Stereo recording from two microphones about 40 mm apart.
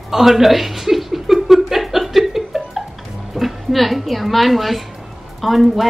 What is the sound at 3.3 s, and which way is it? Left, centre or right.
A woman's voice, centre.